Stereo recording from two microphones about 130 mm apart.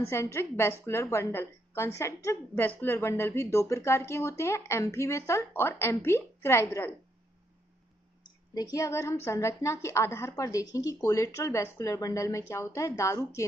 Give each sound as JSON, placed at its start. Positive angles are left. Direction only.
{"t": 0.0, "sound": "a woman's voice", "side_deg": 20}
{"t": 8.2, "sound": "a woman's voice", "side_deg": 30}